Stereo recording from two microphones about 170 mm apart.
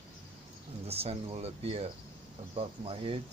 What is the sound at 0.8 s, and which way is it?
Speech, 35° right (ahead or behind).